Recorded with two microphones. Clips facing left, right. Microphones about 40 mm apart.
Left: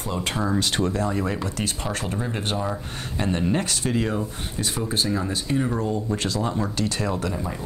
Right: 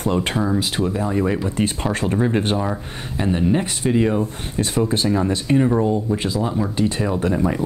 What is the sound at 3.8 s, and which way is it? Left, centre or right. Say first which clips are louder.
Speech: right 6 dB; centre.